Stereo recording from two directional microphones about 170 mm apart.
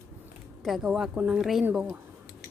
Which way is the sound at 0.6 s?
Centre (ahead or behind).